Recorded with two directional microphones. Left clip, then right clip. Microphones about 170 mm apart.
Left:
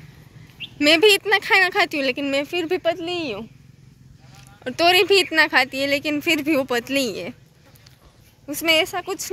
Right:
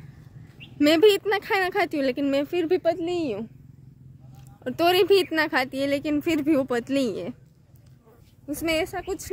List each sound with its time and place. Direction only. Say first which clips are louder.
0.8 s speech: left 3 dB; 25° right (ahead or behind)
4.4 s speech: left 4 dB; 20° right (ahead or behind)
8.5 s speech: left 7 dB; 5° right (ahead or behind)